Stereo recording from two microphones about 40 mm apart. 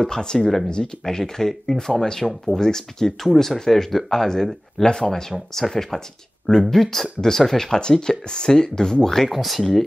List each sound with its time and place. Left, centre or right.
0.0 s speech: centre
0.4 s speech: centre
0.7 s speech: centre
9.3 s speech: centre